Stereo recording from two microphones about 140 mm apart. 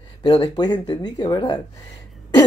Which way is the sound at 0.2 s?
30° left (ahead or behind).